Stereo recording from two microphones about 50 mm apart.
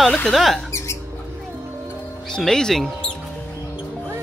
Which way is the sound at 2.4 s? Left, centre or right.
Centre.